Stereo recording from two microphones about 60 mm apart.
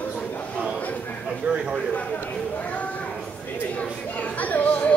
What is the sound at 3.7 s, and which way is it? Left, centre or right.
Speech, left.